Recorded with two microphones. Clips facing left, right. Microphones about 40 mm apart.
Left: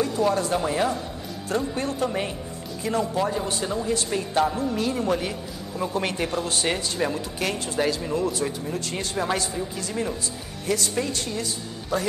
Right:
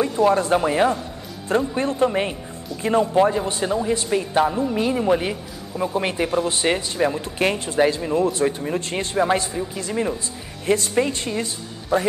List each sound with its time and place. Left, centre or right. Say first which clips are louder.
0.0 s a man's voice: right 5 dB; right